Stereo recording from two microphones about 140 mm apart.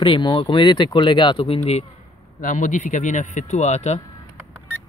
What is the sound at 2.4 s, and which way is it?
Speech, 65° left (ahead or behind).